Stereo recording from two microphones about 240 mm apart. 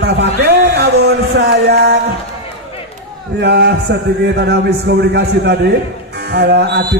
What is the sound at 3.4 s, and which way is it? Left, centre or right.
A man's voice, right.